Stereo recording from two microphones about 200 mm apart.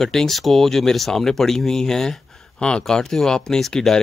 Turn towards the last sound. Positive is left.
turn(degrees=0)  # may be behind; listen again after turning